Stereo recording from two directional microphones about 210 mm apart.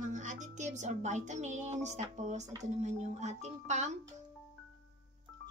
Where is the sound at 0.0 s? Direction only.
35° right (ahead or behind).